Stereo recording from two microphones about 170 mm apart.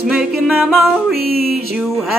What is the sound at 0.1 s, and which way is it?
Music, centre (ahead or behind).